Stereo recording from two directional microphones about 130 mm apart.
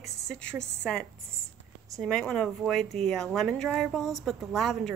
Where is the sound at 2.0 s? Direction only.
5° left (ahead or behind).